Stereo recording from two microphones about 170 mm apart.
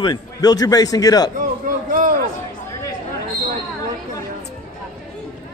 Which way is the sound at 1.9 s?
55° right (ahead or behind).